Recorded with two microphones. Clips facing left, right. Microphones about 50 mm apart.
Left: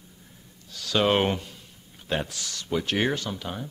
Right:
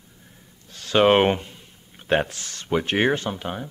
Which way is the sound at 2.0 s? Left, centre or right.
Right.